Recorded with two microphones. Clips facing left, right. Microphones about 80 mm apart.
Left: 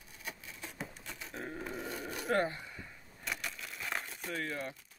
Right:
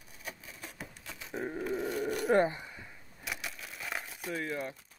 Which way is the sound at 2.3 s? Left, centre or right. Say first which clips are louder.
Right 4 dB; centre.